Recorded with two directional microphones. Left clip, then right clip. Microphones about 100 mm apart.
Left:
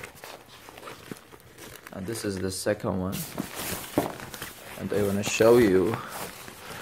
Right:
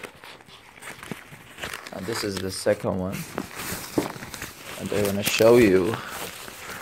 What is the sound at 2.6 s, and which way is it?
Speech, 20° right (ahead or behind).